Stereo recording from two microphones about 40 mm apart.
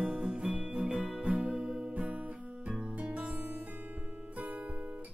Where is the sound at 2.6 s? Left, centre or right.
Right.